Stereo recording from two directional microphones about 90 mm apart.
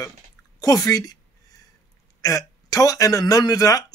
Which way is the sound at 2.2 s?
40° left (ahead or behind).